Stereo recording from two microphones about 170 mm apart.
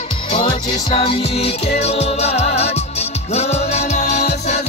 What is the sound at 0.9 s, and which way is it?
Music, 35° left (ahead or behind).